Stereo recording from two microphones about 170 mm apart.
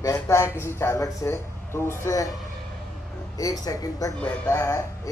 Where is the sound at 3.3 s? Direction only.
20° left (ahead or behind).